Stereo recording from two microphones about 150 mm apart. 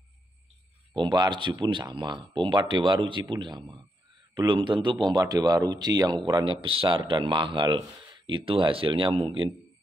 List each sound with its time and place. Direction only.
0.9 s speech: 30° right (ahead or behind)